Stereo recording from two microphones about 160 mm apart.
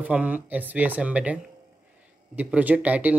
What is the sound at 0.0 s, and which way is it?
Speech, 10° right (ahead or behind).